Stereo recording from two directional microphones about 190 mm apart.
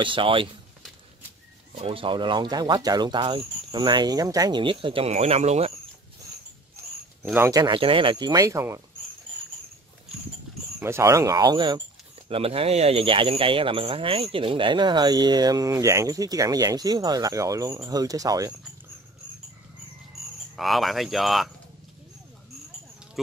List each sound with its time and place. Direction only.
0.0 s speech: 25° right (ahead or behind)
1.8 s speech: 30° right (ahead or behind)
7.2 s speech: 10° right (ahead or behind)
10.8 s speech: 15° right (ahead or behind)
20.5 s speech: centre (ahead or behind)